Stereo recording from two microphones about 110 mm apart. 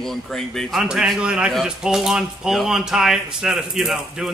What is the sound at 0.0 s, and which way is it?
A man's voice, 5° left (ahead or behind).